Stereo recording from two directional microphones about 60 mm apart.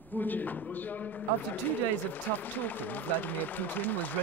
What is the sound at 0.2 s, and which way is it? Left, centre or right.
A man's voice, left.